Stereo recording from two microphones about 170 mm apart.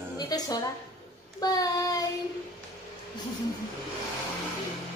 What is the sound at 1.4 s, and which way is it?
Child singing, 20° left (ahead or behind).